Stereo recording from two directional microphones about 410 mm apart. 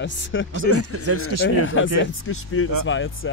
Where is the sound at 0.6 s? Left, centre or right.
Right.